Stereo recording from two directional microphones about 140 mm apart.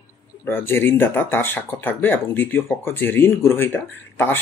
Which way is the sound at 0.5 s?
15° left (ahead or behind).